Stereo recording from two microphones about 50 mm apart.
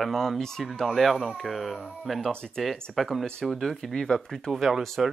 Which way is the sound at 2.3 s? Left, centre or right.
Centre.